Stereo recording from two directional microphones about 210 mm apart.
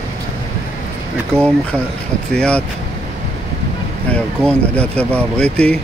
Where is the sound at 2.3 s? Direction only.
5° left (ahead or behind).